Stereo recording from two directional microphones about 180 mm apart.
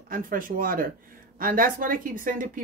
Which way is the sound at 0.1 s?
50° right (ahead or behind).